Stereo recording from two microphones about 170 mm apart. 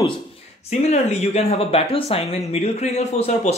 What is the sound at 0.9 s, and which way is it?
Speech, 40° left (ahead or behind).